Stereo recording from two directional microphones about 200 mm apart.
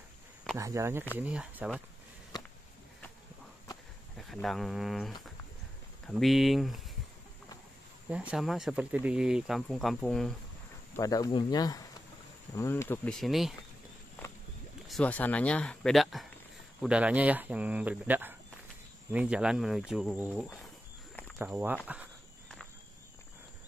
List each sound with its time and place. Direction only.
0.6 s speech: 15° right (ahead or behind)
4.2 s speech: centre (ahead or behind)
8.1 s speech: 5° right (ahead or behind)
11.0 s speech: 20° left (ahead or behind); by 13.6 s centre (ahead or behind)
14.9 s speech: 5° left (ahead or behind)
21.8 s walk: 5° right (ahead or behind)